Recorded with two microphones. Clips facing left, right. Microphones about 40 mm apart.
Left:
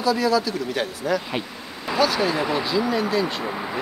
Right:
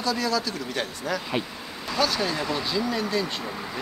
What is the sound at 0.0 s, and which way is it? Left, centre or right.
Speech, centre.